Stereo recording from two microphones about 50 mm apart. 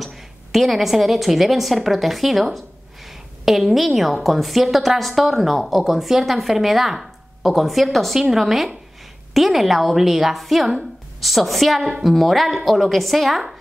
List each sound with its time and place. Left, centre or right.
0.0 s a woman's voice: centre